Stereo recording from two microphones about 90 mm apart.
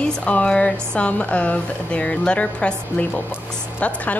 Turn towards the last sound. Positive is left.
turn(degrees=15)  # may be behind; listen again after turning